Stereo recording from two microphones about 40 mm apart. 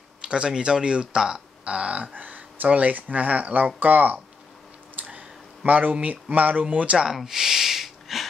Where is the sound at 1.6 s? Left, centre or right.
Right.